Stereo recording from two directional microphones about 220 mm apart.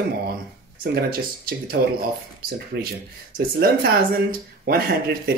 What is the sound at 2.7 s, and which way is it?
Speech, 50° right (ahead or behind).